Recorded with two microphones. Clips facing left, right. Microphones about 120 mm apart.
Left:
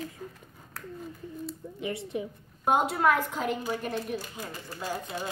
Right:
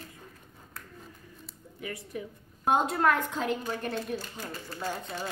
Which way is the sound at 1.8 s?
25° left (ahead or behind).